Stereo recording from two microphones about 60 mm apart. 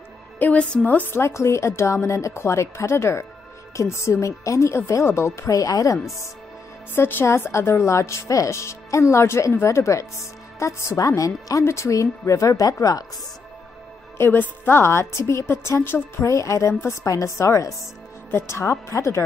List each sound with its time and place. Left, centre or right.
0.4 s a woman's voice: left
1.1 s a woman's voice: left
5.5 s speech: left
7.0 s speech: left
7.2 s a woman's voice: left
11.6 s speech: left
14.1 s a woman's voice: left
16.3 s speech: left
18.3 s a woman's voice: left